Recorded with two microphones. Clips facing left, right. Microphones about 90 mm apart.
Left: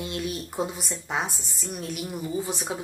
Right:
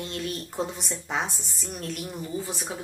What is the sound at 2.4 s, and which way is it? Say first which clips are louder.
Speech: left 3 dB; 20° left (ahead or behind).